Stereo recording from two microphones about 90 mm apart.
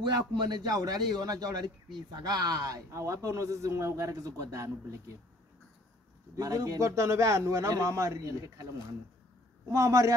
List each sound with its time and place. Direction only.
0.0 s a man's voice: 50° right (ahead or behind)
2.9 s a man's voice: 30° right (ahead or behind)
6.3 s a man's voice: 40° right (ahead or behind)
9.7 s a man's voice: 35° right (ahead or behind)